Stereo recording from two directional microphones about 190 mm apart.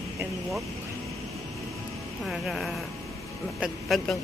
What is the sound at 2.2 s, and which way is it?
Speech, centre (ahead or behind).